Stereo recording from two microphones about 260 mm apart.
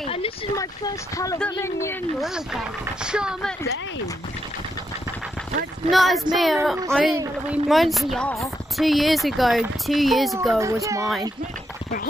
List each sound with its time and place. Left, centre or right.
0.1 s a sound: left
1.1 s speech: centre
2.1 s speech: centre
5.9 s speech: centre
10.6 s a child's voice: centre